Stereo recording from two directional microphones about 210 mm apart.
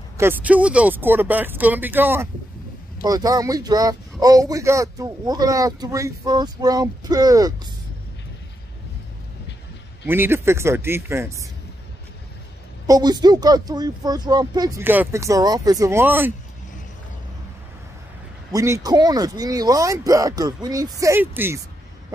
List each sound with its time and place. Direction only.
0.2 s speech: 10° right (ahead or behind)
10.0 s speech: 10° right (ahead or behind)
12.8 s speech: 20° right (ahead or behind)
18.5 s speech: 15° right (ahead or behind)